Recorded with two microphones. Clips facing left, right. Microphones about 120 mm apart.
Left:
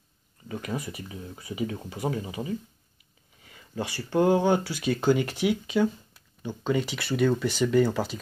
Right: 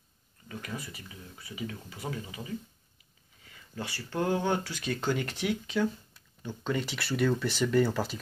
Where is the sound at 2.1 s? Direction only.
30° left (ahead or behind).